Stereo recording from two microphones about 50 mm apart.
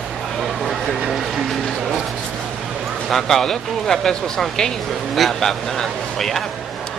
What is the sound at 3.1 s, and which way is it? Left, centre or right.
Speech, centre.